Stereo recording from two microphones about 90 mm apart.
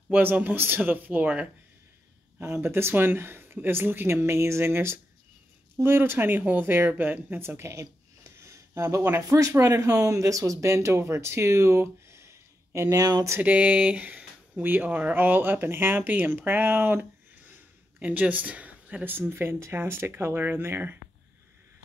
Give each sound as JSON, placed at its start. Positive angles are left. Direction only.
{"t": 0.1, "sound": "speech", "side_deg": -20}
{"t": 2.4, "sound": "speech", "side_deg": -25}
{"t": 13.4, "sound": "speech", "side_deg": -15}